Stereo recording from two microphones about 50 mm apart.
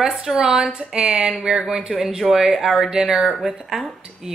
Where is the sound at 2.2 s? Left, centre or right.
Centre.